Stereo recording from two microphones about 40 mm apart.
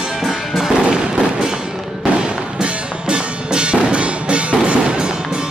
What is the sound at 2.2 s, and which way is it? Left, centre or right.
Music, right.